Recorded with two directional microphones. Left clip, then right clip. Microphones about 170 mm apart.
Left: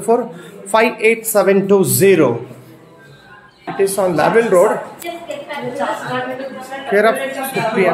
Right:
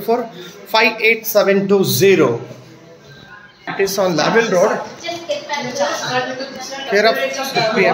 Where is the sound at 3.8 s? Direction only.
20° left (ahead or behind).